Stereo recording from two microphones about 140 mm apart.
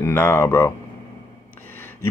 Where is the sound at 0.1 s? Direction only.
15° left (ahead or behind).